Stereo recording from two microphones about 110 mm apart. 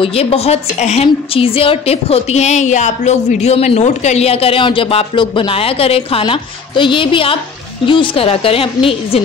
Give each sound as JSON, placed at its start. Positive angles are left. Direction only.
{"t": 0.0, "sound": "a woman's voice", "side_deg": 60}